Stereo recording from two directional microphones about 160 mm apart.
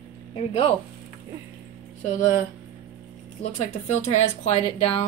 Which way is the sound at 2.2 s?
55° left (ahead or behind).